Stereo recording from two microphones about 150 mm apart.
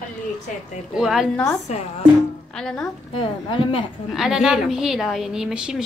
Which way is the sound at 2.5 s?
5° left (ahead or behind).